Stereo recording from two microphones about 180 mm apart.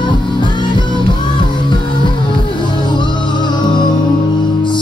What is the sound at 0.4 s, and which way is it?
Music, 25° left (ahead or behind).